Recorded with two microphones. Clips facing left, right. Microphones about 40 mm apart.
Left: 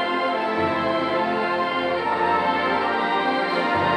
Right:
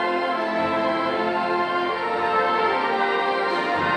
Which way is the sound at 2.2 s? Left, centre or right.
Centre.